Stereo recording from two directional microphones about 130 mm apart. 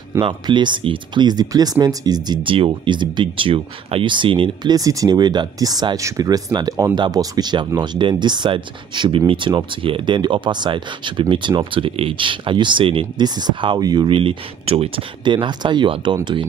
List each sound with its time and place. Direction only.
0.2 s speech: 40° right (ahead or behind)
4.7 s speech: 25° right (ahead or behind); by 15.0 s 50° right (ahead or behind)
15.2 s speech: 35° right (ahead or behind)